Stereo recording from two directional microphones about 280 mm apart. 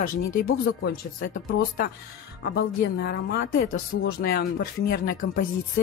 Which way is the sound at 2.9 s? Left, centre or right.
Left.